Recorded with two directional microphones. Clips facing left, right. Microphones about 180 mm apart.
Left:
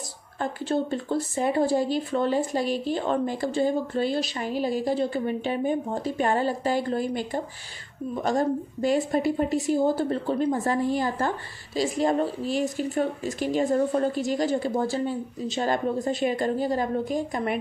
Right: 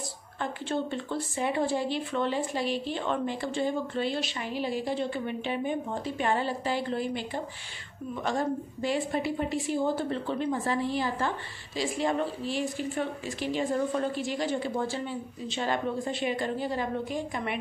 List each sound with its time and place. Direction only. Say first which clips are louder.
0.4 s a woman's voice: left 5 dB; 40° left (ahead or behind)